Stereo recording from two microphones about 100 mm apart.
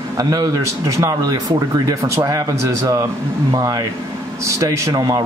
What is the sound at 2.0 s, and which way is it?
Speech, 30° right (ahead or behind).